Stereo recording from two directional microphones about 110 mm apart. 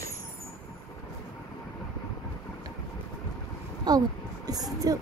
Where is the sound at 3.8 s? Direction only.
35° right (ahead or behind).